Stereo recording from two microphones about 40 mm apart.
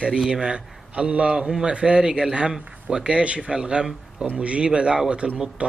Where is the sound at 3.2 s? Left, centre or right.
Right.